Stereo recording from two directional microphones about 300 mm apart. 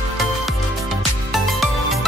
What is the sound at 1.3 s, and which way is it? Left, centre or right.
Music, centre.